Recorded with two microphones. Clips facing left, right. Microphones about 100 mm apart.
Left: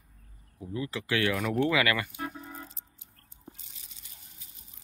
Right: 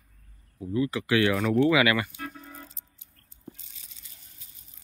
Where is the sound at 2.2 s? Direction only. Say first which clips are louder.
Left 2 dB; 20° left (ahead or behind).